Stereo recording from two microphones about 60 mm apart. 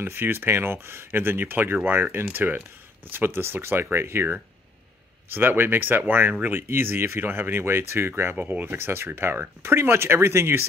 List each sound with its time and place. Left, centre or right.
0.0 s speech: right